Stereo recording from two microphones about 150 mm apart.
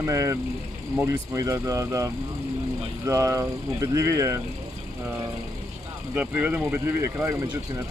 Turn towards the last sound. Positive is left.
turn(degrees=-15)  # may be behind; listen again after turning